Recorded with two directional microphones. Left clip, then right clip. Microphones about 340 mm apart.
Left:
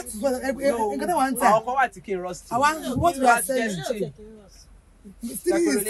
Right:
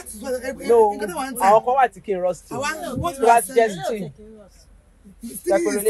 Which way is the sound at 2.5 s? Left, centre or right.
Left.